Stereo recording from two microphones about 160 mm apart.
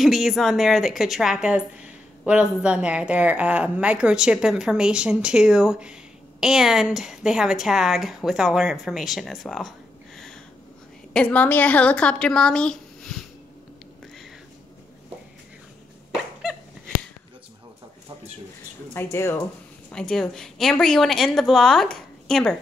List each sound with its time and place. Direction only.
0.0 s speech: centre (ahead or behind)
18.9 s speech: 15° left (ahead or behind)
19.9 s speech: 5° left (ahead or behind)